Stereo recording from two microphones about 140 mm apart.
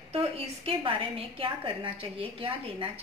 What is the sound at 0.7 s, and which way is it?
A woman's voice, 40° right (ahead or behind).